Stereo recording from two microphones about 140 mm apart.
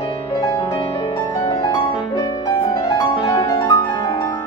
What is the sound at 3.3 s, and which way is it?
Music, 25° left (ahead or behind).